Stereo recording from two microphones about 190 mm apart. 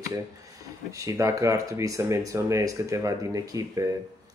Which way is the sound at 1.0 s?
15° right (ahead or behind).